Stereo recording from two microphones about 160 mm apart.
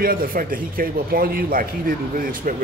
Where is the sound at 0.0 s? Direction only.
65° right (ahead or behind).